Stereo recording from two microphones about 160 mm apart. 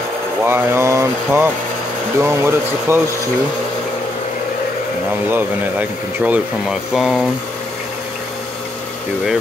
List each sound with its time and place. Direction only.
0.4 s speech: 15° right (ahead or behind)
5.3 s speech: 10° right (ahead or behind)